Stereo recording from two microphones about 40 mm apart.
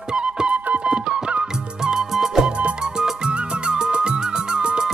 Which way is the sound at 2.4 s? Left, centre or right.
Right.